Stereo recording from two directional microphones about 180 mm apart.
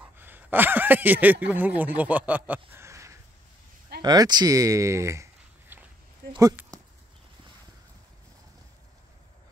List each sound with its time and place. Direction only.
0.2 s speech: 10° right (ahead or behind)